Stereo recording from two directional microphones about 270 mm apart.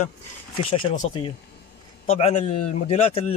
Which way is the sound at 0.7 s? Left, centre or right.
Centre.